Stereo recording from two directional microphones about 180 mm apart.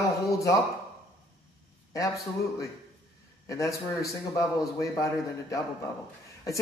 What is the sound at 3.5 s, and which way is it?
Speech, 20° left (ahead or behind).